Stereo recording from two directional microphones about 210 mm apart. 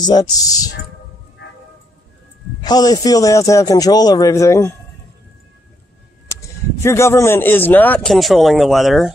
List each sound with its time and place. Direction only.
0.0 s speech: 20° left (ahead or behind)
2.6 s speech: 20° left (ahead or behind)
6.8 s speech: 10° left (ahead or behind)